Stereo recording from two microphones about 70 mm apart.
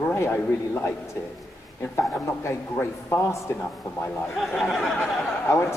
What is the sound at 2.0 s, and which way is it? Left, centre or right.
A man's voice, left.